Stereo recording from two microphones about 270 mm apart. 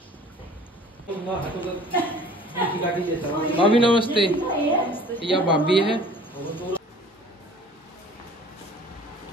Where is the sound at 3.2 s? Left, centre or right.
Centre.